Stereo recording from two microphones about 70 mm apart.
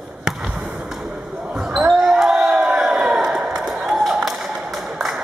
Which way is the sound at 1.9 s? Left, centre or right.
Centre.